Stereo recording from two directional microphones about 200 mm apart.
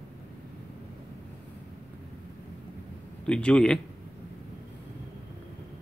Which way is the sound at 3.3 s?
5° left (ahead or behind).